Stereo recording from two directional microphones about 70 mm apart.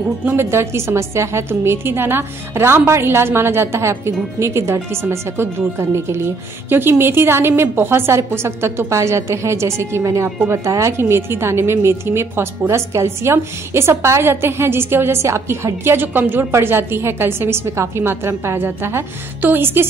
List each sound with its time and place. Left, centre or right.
0.4 s a woman's voice: right